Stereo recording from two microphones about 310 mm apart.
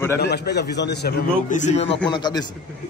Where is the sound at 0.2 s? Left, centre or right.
Left; by 2.4 s centre.